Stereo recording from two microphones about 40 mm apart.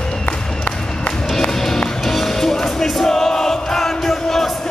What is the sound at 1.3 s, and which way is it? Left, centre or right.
Music, centre.